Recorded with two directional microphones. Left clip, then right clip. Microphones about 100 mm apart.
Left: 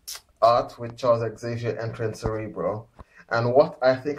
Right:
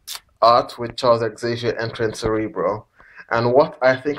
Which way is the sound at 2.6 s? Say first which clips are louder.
Right 6 dB; 30° right (ahead or behind).